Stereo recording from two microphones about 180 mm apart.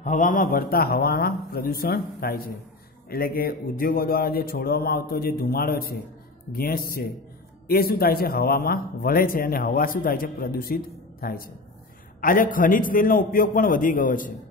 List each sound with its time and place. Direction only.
0.0 s a man's voice: 45° left (ahead or behind)